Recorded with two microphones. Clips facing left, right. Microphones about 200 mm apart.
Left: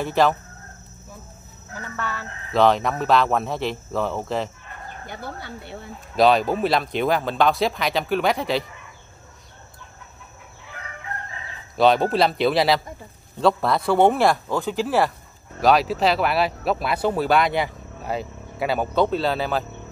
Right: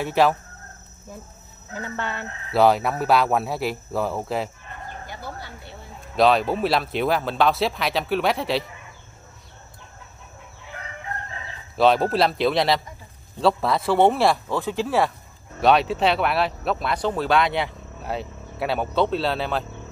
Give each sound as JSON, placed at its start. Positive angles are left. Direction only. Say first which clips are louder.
{"t": 0.0, "sound": "speech", "louder": "even", "side_deg": -5}
{"t": 1.7, "sound": "speech", "louder": "right 1 dB", "side_deg": -25}
{"t": 2.5, "sound": "speech", "louder": "even", "side_deg": -5}
{"t": 5.2, "sound": "speech", "louder": "left 2 dB", "side_deg": 60}
{"t": 6.1, "sound": "speech", "louder": "left 1 dB", "side_deg": 0}
{"t": 11.7, "sound": "speech", "louder": "left 1 dB", "side_deg": 0}